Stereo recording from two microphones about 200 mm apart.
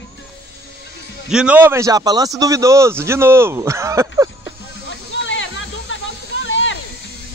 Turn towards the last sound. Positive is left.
turn(degrees=70)  # may be behind; listen again after turning